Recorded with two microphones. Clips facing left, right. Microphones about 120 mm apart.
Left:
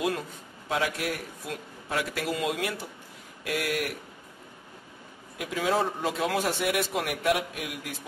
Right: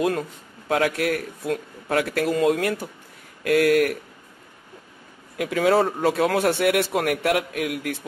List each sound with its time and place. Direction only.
0.7 s a man's voice: 55° right (ahead or behind)
5.4 s a man's voice: 60° right (ahead or behind)